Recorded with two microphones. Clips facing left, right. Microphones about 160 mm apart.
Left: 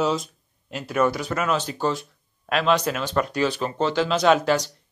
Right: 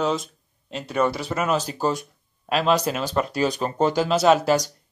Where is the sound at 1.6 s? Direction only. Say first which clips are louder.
Right 1 dB; 35° right (ahead or behind).